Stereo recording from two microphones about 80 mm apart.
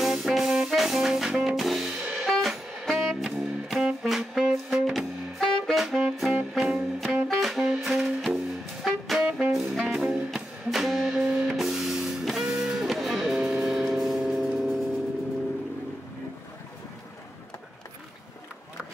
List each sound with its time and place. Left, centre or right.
0.0 s music: centre
4.9 s saxophone: centre
7.2 s music: centre